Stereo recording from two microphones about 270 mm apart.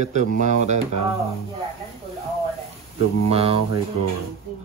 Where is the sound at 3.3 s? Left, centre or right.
Right.